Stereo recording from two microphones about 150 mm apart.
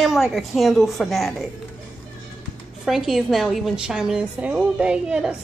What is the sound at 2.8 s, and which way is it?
A woman's voice, centre (ahead or behind).